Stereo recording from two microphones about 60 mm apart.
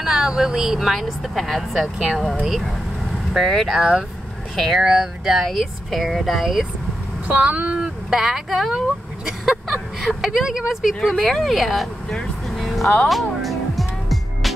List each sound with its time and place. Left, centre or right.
0.0 s speech: centre
7.2 s speech: right
7.7 s speech: centre
13.1 s music: centre